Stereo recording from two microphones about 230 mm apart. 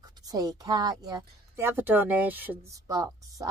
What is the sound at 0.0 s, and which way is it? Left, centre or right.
Speech, centre.